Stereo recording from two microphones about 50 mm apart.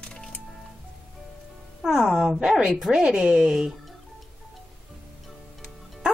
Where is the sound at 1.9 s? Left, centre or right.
Centre.